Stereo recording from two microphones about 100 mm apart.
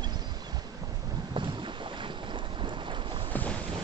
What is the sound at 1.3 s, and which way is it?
Boat, 55° right (ahead or behind).